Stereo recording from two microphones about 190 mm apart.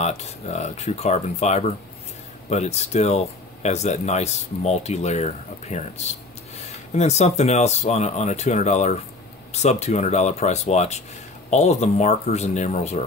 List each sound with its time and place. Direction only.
0.0 s speech: 35° left (ahead or behind)